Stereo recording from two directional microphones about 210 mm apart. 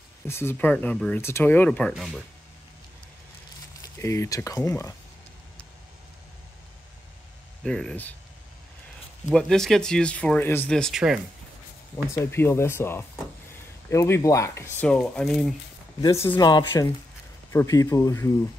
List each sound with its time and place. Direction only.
0.3 s speech: 10° left (ahead or behind)
3.8 s speech: 15° left (ahead or behind)
7.6 s speech: 5° left (ahead or behind)
9.3 s speech: centre (ahead or behind)
12.3 s speech: 10° left (ahead or behind)
16.0 s speech: 15° left (ahead or behind)